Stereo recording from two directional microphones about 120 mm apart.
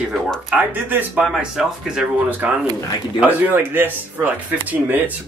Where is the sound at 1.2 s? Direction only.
5° right (ahead or behind).